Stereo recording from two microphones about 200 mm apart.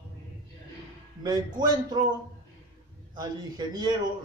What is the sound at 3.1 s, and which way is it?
Speech, 20° right (ahead or behind).